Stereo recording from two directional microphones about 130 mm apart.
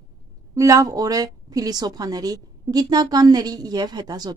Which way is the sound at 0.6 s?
25° right (ahead or behind).